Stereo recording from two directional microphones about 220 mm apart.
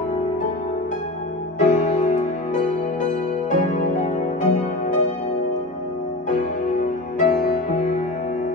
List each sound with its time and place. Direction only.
1.6 s music: 35° left (ahead or behind)
6.2 s music: 35° left (ahead or behind)